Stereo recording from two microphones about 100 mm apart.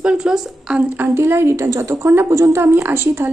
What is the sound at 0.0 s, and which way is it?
A woman's voice, 10° right (ahead or behind).